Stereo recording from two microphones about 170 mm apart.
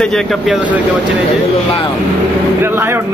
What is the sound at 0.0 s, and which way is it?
Speech, centre (ahead or behind).